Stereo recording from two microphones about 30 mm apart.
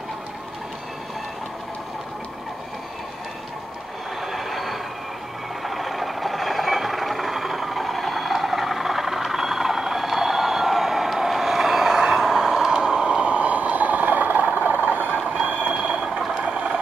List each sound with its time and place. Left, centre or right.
4.3 s vehicle: centre
12.6 s vehicle: right